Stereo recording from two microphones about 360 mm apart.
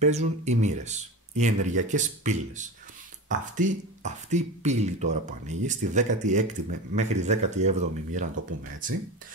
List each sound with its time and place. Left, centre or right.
0.0 s speech: centre